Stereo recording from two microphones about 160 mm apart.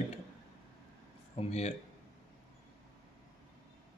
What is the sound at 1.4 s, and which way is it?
Speech, 40° left (ahead or behind).